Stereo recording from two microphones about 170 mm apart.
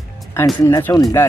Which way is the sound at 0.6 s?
20° left (ahead or behind).